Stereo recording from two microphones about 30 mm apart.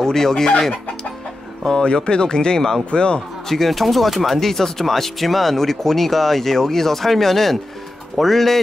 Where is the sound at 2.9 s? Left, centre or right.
Left.